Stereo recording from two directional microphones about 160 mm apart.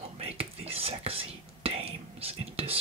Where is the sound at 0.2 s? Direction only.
35° right (ahead or behind).